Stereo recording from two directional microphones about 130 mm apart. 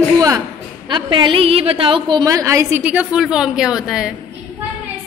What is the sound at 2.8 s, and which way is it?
A woman's voice, 10° right (ahead or behind).